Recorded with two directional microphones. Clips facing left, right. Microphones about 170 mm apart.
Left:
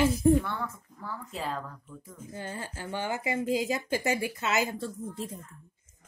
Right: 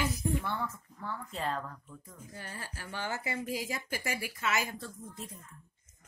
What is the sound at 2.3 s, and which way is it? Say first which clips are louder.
A woman's voice: left 7 dB; 25° left (ahead or behind).